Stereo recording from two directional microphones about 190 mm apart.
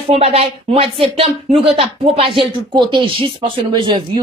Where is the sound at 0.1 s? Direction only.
30° right (ahead or behind).